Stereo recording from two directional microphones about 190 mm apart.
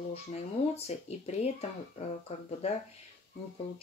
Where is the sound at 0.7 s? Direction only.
35° left (ahead or behind).